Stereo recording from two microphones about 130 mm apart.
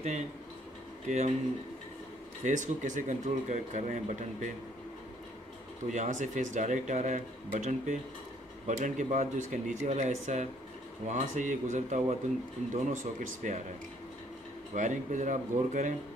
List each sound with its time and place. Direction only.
1.0 s speech: 60° right (ahead or behind)
2.4 s speech: 70° right (ahead or behind)
5.9 s speech: 70° right (ahead or behind)
7.5 s speech: 85° right
8.6 s speech: 70° right (ahead or behind)
14.7 s speech: 70° right (ahead or behind)